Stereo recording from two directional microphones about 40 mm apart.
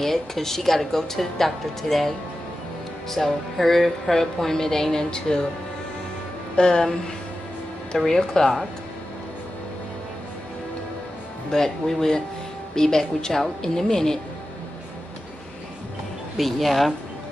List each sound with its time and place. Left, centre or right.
0.0 s a woman's voice: centre
6.5 s a woman's voice: centre
8.1 s a woman's voice: centre
11.5 s a woman's voice: centre
16.3 s speech: centre